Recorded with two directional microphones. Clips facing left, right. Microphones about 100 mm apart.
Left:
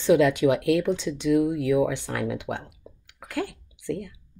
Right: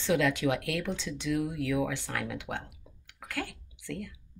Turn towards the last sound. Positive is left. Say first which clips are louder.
# left 8 dB
turn(degrees=20)  # may be behind; listen again after turning